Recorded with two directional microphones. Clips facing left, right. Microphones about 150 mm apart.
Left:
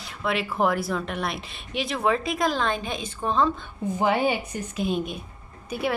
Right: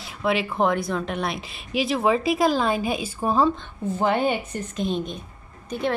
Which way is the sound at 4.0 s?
10° left (ahead or behind).